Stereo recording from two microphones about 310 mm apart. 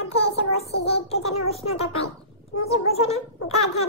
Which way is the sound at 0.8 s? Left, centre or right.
Centre.